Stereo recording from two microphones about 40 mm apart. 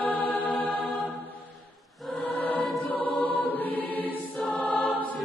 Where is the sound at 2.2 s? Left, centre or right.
Left.